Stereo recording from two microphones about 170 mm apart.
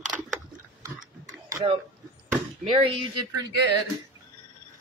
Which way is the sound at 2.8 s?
30° right (ahead or behind).